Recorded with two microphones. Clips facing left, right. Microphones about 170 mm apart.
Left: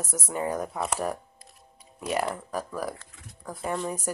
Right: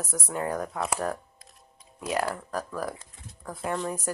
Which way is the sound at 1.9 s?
Centre (ahead or behind).